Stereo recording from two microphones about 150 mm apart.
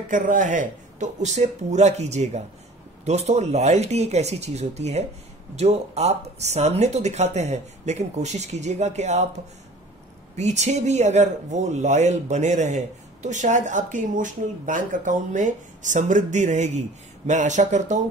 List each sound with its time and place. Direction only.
0.1 s speech: 60° right (ahead or behind)
10.3 s speech: 50° right (ahead or behind)